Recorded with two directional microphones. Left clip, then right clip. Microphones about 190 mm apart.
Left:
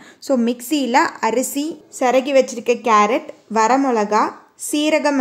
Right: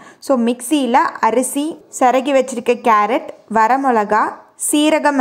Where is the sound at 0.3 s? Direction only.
Centre (ahead or behind).